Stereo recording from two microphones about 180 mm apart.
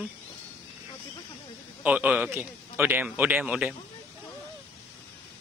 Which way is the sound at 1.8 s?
10° right (ahead or behind).